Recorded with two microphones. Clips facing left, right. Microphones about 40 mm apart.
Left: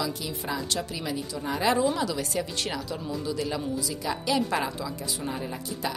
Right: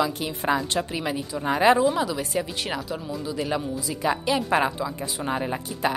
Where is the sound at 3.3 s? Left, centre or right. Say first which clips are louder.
Right 4 dB; right.